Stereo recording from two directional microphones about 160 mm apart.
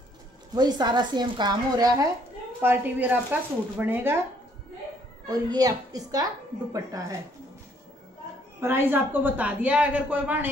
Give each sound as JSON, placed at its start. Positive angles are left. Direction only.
{"t": 0.6, "sound": "a woman's voice", "side_deg": -25}
{"t": 2.6, "sound": "a woman's voice", "side_deg": -10}
{"t": 5.5, "sound": "a woman's voice", "side_deg": -25}
{"t": 8.5, "sound": "a woman's voice", "side_deg": -15}